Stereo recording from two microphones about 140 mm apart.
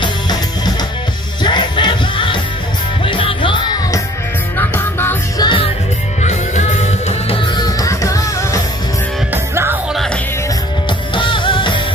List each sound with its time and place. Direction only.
0.0 s music: 30° left (ahead or behind)
4.6 s music: 15° left (ahead or behind)
5.4 s music: 35° left (ahead or behind)
6.2 s music: 55° left (ahead or behind)
7.5 s music: 25° left (ahead or behind)
9.3 s music: 15° right (ahead or behind)
11.1 s music: 35° left (ahead or behind)